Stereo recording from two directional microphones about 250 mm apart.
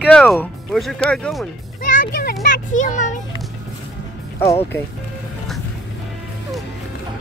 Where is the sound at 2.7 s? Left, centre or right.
Left.